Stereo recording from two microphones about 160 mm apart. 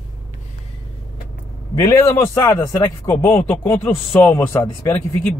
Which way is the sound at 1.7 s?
15° left (ahead or behind).